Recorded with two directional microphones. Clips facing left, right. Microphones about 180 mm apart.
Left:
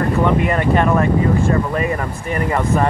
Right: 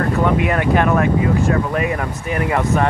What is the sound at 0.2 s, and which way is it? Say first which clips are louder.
Speech: even; 5° right (ahead or behind).